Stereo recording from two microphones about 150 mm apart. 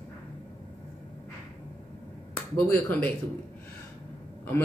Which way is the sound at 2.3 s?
10° left (ahead or behind).